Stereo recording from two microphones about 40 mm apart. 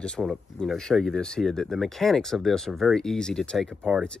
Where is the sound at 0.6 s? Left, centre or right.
Left.